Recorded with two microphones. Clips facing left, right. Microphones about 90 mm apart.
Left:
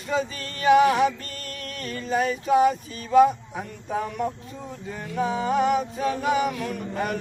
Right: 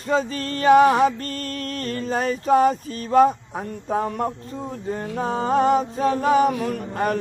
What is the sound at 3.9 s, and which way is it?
Music, 45° right (ahead or behind).